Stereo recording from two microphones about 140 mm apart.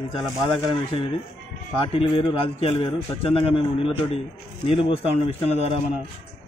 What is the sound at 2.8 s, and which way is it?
Speech, 40° left (ahead or behind).